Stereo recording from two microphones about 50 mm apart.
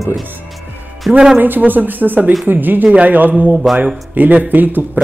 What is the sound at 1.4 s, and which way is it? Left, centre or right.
A man's voice, right.